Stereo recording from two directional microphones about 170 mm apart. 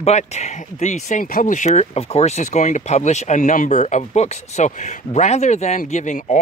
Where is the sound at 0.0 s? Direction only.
40° left (ahead or behind).